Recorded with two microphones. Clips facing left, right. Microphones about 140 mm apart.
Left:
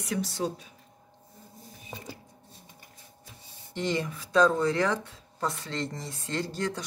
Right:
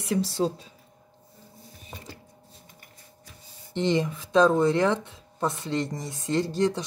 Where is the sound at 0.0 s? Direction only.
25° right (ahead or behind).